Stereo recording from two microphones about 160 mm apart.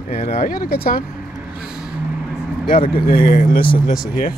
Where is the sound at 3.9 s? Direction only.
5° right (ahead or behind).